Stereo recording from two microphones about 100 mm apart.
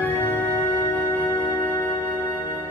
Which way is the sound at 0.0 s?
20° left (ahead or behind).